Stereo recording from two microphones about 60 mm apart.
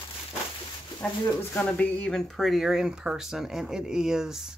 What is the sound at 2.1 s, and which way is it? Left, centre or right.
Speech, centre.